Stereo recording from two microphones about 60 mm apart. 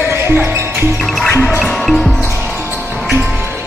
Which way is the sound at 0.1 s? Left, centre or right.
Right.